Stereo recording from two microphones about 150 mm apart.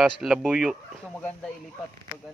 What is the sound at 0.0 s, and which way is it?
Speech, centre (ahead or behind).